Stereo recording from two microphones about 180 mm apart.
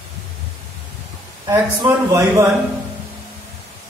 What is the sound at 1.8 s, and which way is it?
Speech, 15° right (ahead or behind).